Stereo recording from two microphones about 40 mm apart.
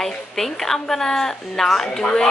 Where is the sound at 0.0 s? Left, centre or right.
Centre.